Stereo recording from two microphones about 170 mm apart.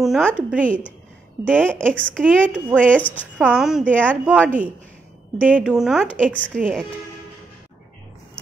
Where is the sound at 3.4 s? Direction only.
5° right (ahead or behind).